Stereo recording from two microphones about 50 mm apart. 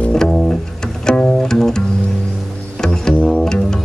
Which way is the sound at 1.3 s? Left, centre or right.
Centre.